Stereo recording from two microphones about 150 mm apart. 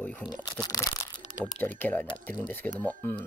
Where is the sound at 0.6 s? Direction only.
25° left (ahead or behind).